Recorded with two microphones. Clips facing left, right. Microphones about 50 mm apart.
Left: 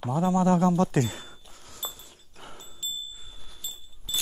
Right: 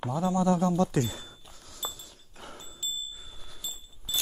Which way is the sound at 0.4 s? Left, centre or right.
Left.